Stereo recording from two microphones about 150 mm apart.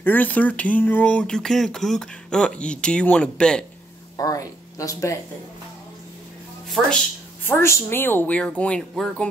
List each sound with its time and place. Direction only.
0.0 s speech: 10° left (ahead or behind)
4.2 s speech: 25° left (ahead or behind)
7.4 s speech: 15° left (ahead or behind)